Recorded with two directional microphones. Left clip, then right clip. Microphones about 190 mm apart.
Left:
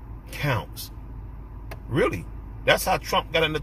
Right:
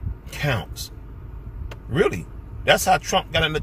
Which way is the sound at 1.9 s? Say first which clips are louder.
Right 3 dB; 10° right (ahead or behind).